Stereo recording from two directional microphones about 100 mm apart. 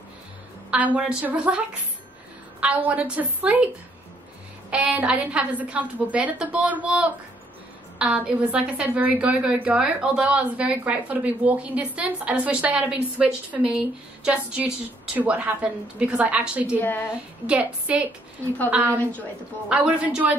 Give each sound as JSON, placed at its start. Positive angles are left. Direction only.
{"t": 0.7, "sound": "a woman's voice", "side_deg": -10}
{"t": 16.6, "sound": "a woman's voice", "side_deg": 20}
{"t": 17.5, "sound": "a woman's voice", "side_deg": -10}